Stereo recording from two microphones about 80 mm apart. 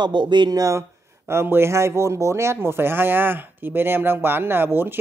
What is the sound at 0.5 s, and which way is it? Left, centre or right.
Speech, right.